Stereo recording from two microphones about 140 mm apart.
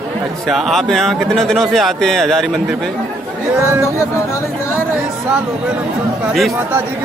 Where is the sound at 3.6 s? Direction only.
20° right (ahead or behind).